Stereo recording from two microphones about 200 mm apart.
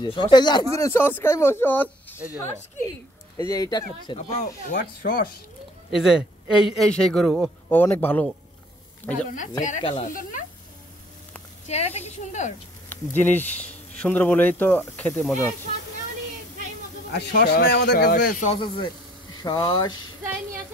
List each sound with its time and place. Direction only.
0.0 s speech: 20° left (ahead or behind)
3.4 s speech: 20° left (ahead or behind)
4.2 s speech: 35° left (ahead or behind)
5.9 s a man's voice: centre (ahead or behind)
9.0 s speech: 20° left (ahead or behind)
9.7 s speech: 35° left (ahead or behind)
11.6 s speech: 35° left (ahead or behind)
12.9 s speech: 10° left (ahead or behind)
17.1 s a man's voice: 55° left (ahead or behind)
18.4 s speech: 30° left (ahead or behind)